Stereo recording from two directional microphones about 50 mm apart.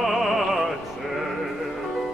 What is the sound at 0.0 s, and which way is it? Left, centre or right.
Opera, centre.